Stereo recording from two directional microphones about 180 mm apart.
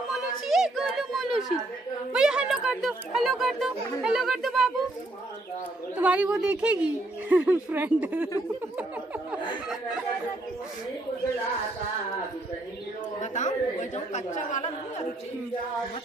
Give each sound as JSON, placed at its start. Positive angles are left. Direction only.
{"t": 0.1, "sound": "a sound", "side_deg": 0}
{"t": 2.1, "sound": "speech", "side_deg": -5}
{"t": 5.9, "sound": "speech", "side_deg": -10}
{"t": 13.2, "sound": "speech", "side_deg": 45}